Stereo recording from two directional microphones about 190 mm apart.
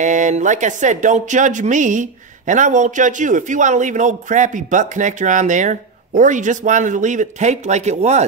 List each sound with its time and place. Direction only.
0.0 s speech: 40° right (ahead or behind)